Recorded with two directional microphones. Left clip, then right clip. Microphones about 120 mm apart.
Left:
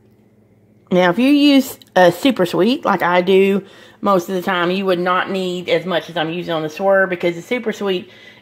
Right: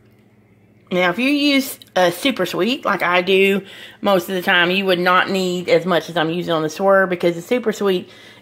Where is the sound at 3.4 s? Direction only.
25° left (ahead or behind).